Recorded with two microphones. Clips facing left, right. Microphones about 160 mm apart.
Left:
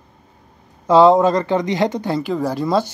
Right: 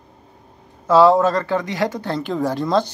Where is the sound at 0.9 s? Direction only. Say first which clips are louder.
Left 2 dB; 20° left (ahead or behind).